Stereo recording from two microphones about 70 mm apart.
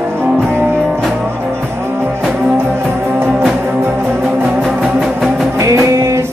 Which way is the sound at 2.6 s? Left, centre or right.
Right.